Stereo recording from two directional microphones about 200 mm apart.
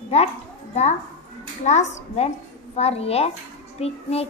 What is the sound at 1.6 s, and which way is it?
A child's voice, 35° left (ahead or behind).